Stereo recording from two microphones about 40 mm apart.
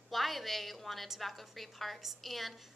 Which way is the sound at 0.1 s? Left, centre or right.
Centre.